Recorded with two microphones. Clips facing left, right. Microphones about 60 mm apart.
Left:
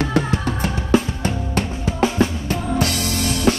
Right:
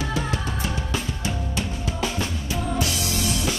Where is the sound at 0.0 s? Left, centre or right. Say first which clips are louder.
Left 7 dB; left.